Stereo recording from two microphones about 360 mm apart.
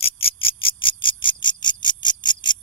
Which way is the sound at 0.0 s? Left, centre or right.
Centre.